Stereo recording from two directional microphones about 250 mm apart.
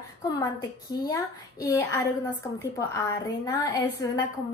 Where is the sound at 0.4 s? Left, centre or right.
Centre.